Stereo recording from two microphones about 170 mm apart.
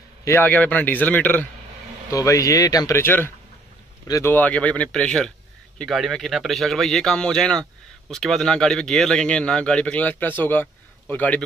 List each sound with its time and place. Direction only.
0.2 s a man's voice: 15° left (ahead or behind)